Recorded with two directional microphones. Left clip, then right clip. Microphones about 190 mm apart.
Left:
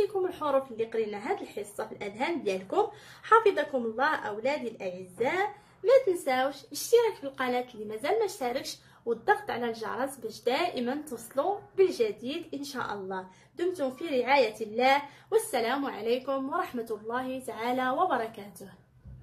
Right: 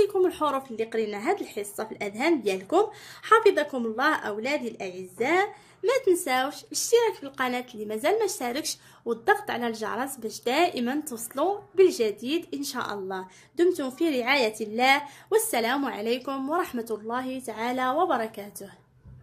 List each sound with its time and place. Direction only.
0.0 s a woman's voice: 55° right (ahead or behind)